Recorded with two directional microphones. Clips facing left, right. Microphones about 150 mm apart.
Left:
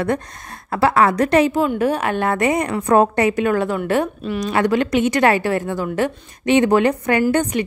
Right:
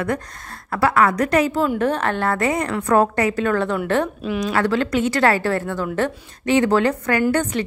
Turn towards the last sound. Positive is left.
turn(degrees=20)  # may be behind; listen again after turning